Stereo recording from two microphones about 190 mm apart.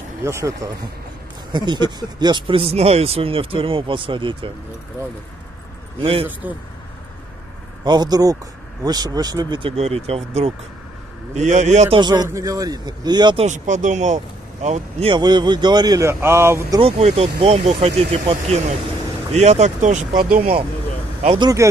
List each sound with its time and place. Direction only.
0.2 s speech: 15° right (ahead or behind)
6.4 s speech: 10° right (ahead or behind)
7.8 s speech: 20° right (ahead or behind); by 12.0 s 40° right (ahead or behind)
12.0 s speech: 20° right (ahead or behind)
13.5 s speech: 40° right (ahead or behind); by 16.8 s 15° right (ahead or behind)
16.8 s speech: 30° right (ahead or behind)
19.3 s speech: 35° right (ahead or behind)